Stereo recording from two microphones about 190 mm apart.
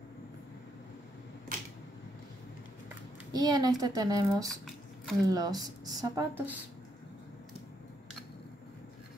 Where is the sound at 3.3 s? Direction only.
20° right (ahead or behind).